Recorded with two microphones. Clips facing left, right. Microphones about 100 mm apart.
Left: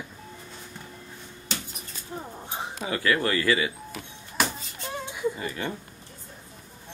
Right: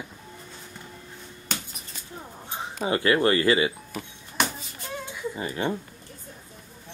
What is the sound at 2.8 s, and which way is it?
Speech, 25° right (ahead or behind).